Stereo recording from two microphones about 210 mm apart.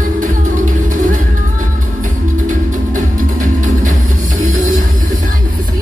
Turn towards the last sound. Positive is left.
turn(degrees=-35)  # may be behind; listen again after turning